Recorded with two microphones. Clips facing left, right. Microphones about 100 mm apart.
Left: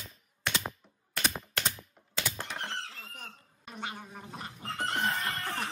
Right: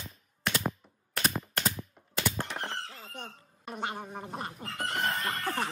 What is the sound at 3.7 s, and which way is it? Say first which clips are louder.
Gargling: right 5 dB; 40° right (ahead or behind).